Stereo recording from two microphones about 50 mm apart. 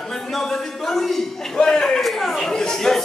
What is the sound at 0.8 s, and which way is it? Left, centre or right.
A man's voice, centre.